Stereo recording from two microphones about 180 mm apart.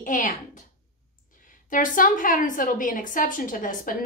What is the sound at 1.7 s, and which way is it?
A woman's voice, 45° left (ahead or behind).